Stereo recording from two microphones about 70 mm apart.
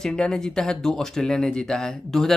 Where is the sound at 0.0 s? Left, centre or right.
Centre.